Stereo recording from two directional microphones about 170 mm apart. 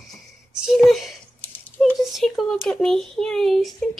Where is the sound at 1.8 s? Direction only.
Centre (ahead or behind).